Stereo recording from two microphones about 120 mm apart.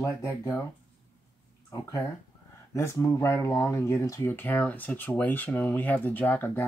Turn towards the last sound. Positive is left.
turn(degrees=15)  # may be behind; listen again after turning